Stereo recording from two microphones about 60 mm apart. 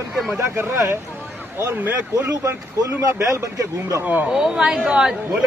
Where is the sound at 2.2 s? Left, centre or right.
Right.